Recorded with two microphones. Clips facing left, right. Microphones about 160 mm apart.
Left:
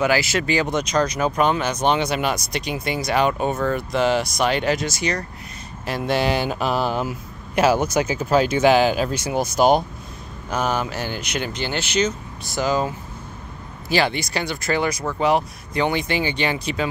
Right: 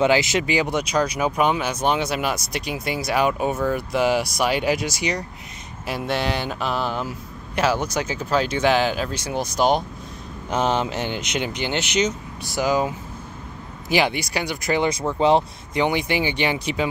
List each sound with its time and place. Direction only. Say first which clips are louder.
0.0 s speech: right 1 dB; 20° right (ahead or behind)
6.1 s speech: left 5 dB; 5° left (ahead or behind)
10.5 s speech: right 1 dB; 25° right (ahead or behind)